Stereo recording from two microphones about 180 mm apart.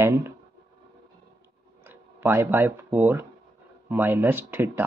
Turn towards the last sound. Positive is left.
turn(degrees=-10)  # may be behind; listen again after turning